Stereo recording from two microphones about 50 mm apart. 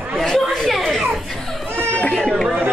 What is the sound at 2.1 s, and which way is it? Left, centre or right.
Speech, centre.